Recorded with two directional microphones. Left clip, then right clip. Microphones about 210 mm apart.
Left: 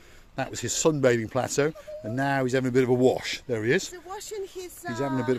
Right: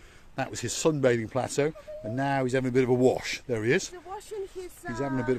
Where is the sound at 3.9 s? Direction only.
55° left (ahead or behind).